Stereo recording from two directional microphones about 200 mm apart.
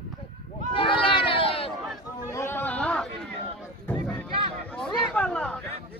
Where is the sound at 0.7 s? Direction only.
25° left (ahead or behind).